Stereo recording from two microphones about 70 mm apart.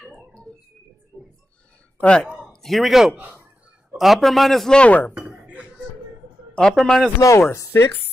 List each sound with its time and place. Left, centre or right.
0.5 s a man's voice: centre
2.0 s speech: centre
2.5 s a man's voice: centre
4.7 s speech: left
5.2 s a sound: right
6.7 s a man's voice: centre
7.2 s speech: left
7.7 s speech: left